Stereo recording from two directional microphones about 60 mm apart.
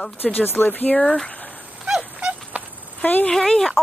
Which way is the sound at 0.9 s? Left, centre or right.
Centre.